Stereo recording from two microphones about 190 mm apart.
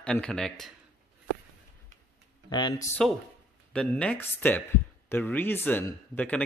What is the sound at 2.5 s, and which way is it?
Speech, 20° left (ahead or behind).